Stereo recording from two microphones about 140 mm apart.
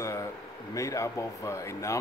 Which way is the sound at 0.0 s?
20° left (ahead or behind).